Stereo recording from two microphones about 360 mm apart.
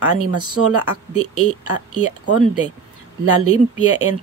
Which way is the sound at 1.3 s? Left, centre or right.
Right.